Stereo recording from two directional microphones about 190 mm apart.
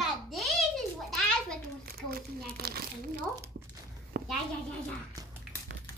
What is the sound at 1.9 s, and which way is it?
A child's voice, 55° right (ahead or behind).